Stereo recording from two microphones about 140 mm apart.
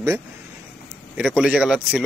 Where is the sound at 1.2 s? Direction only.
5° right (ahead or behind).